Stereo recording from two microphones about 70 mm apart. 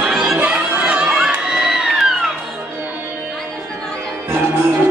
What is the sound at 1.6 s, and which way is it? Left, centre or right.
Music, centre.